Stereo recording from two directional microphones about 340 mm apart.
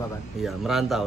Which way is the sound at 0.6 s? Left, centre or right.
Centre.